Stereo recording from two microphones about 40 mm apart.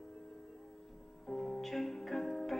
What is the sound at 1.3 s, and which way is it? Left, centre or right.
Music, centre.